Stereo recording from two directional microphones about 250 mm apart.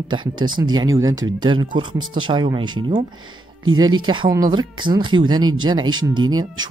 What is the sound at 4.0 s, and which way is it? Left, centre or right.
Speech, centre.